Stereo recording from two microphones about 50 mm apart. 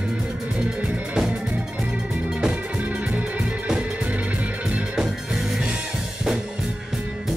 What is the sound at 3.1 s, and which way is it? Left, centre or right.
Music, centre.